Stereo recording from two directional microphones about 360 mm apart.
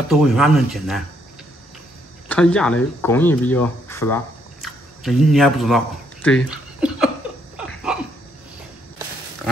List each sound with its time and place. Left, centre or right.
0.1 s speech: centre
2.2 s speech: centre
6.2 s a sound: centre